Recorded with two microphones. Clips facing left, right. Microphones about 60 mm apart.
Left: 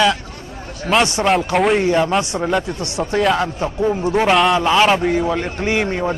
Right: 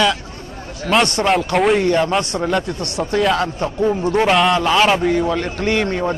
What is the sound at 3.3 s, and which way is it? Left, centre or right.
Speech, centre.